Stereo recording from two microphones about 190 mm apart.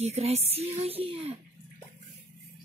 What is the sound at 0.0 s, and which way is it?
Speech, 35° right (ahead or behind).